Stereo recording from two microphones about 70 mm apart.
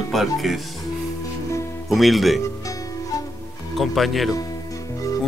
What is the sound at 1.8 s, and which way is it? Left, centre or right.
Speech, centre.